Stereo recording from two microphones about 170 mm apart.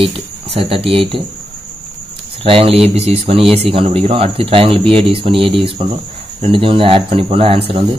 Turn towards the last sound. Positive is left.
turn(degrees=-30)  # may be behind; listen again after turning